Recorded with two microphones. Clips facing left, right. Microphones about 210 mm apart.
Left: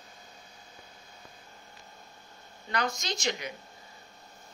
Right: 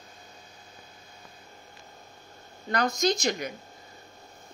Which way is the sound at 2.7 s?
40° right (ahead or behind).